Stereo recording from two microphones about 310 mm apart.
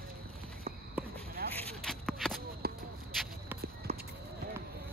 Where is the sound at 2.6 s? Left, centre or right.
Right.